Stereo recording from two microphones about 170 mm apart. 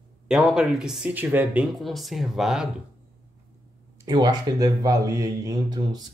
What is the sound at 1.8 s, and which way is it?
Speech, centre (ahead or behind).